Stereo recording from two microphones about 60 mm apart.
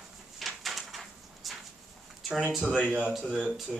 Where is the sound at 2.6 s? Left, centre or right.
Centre.